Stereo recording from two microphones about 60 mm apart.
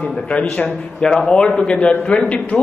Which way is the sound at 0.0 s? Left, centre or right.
Centre.